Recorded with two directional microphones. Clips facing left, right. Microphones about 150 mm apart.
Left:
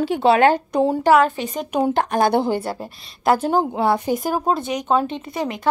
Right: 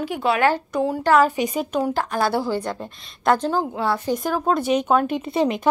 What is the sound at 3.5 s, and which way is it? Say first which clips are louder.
Speech: left 4 dB; 15° left (ahead or behind).